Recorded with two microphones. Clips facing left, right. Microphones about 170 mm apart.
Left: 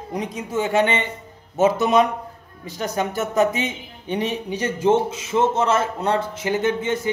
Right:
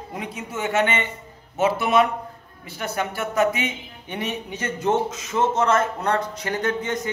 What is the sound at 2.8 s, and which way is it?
A man's voice, 20° left (ahead or behind).